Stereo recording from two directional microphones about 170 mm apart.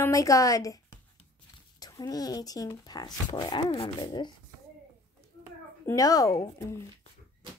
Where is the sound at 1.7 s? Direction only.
20° left (ahead or behind).